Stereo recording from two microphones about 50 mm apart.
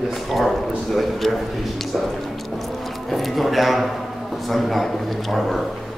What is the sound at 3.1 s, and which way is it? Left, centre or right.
A man's voice, centre.